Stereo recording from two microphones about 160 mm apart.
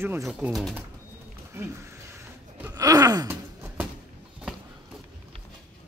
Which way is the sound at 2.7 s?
20° right (ahead or behind).